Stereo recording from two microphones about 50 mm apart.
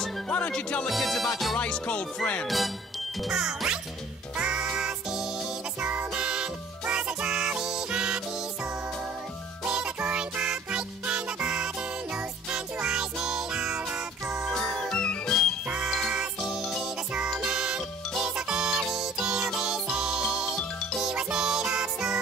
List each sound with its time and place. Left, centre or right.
0.3 s music: left
0.8 s music: centre
1.7 s music: centre
2.4 s music: centre
3.3 s music: centre
5.8 s music: right; by 8.2 s centre
9.7 s music: centre
14.5 s music: centre
17.5 s music: centre